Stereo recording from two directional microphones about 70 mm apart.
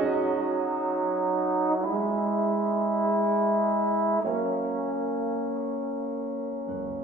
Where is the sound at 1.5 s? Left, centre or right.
Left.